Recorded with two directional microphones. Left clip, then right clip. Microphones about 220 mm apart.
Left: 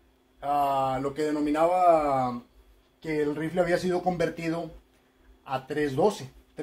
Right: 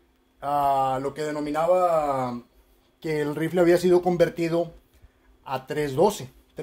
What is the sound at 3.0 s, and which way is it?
Speech, 45° right (ahead or behind).